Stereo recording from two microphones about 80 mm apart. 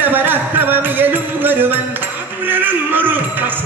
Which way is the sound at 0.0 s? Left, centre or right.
Right.